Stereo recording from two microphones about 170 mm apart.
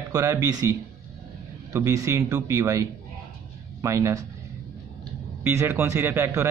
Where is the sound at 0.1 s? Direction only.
20° right (ahead or behind).